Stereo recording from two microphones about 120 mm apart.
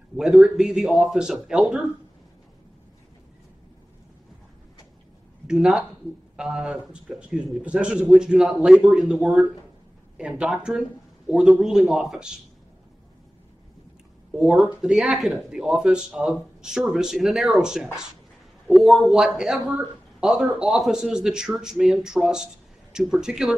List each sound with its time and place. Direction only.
0.1 s speech: centre (ahead or behind)
5.5 s a man's voice: 5° right (ahead or behind)
14.3 s speech: centre (ahead or behind)